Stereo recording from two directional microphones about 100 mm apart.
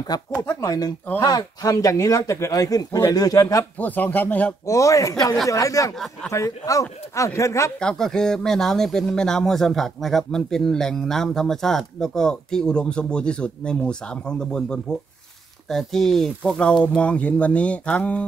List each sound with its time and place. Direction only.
0.4 s speech: 35° left (ahead or behind)
3.7 s speech: 15° left (ahead or behind)
4.6 s speech: 30° left (ahead or behind)
7.8 s speech: 5° left (ahead or behind)